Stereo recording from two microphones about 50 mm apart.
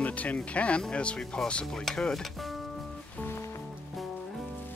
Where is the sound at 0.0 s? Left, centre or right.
Left.